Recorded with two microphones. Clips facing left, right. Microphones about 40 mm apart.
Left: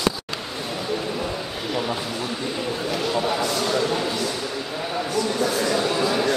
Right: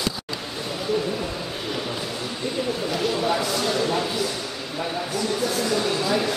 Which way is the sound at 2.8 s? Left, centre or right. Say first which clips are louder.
Left 1 dB; centre.